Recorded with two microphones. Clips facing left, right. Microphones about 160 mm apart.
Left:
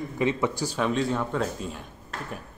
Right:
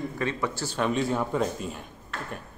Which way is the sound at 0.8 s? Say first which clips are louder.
Even; 5° right (ahead or behind).